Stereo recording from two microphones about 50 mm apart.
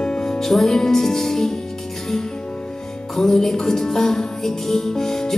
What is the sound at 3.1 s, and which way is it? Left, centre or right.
Music, centre.